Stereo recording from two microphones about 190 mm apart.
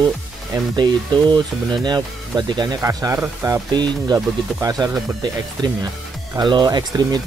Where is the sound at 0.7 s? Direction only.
25° right (ahead or behind).